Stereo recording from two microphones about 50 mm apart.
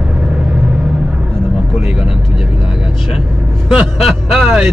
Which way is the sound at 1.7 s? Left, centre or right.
Centre.